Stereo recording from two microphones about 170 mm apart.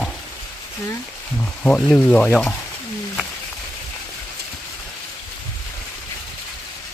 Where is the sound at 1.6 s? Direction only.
5° left (ahead or behind).